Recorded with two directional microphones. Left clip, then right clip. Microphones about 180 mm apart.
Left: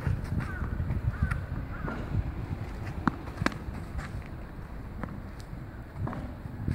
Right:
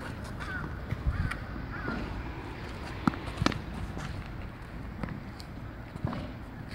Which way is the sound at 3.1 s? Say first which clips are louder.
Even; 25° right (ahead or behind).